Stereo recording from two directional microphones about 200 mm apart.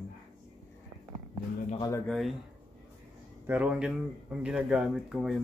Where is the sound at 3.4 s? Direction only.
10° right (ahead or behind).